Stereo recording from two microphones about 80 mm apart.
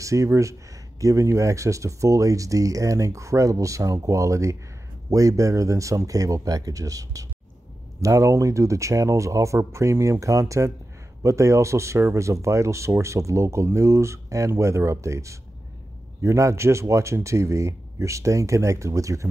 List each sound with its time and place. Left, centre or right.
0.0 s speech: right